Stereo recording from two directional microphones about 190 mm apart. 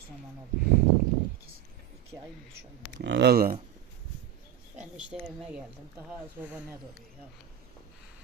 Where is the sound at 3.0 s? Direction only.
60° right (ahead or behind).